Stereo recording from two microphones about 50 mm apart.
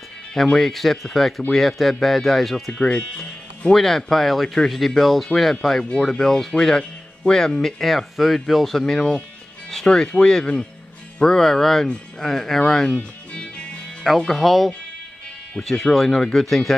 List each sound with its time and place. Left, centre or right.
0.3 s speech: centre
2.7 s speech: centre
3.7 s speech: centre
5.9 s speech: centre
13.3 s music: left
14.2 s speech: centre
15.6 s speech: centre